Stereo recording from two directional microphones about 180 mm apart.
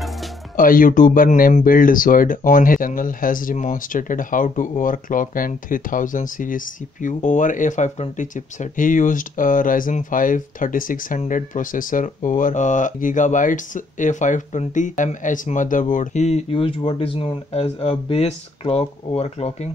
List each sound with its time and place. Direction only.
0.6 s speech: 50° left (ahead or behind)